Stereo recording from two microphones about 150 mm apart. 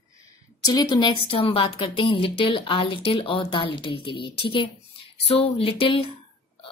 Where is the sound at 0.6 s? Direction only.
30° left (ahead or behind).